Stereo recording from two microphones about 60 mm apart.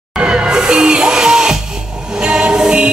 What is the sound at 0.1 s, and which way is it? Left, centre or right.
Music, centre.